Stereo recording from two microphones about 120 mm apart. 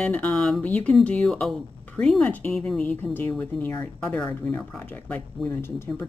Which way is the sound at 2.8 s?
15° left (ahead or behind).